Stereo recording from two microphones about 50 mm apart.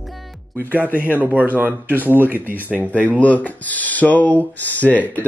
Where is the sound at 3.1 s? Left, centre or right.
Left.